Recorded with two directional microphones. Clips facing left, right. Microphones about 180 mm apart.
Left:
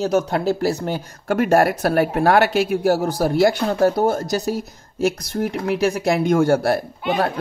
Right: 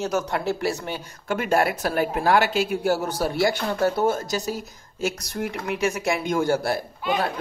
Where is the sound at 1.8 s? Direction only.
60° left (ahead or behind); by 4.3 s 40° left (ahead or behind).